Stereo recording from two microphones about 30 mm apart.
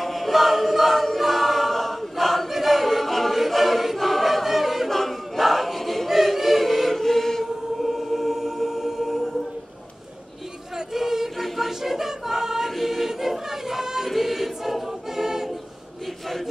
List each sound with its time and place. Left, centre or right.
0.0 s choir: centre
4.8 s choir: centre
7.8 s music: centre
10.9 s singing: centre
11.3 s choir: centre
12.6 s choir: centre